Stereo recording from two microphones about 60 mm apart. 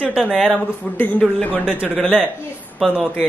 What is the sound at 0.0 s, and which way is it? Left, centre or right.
Speech, right.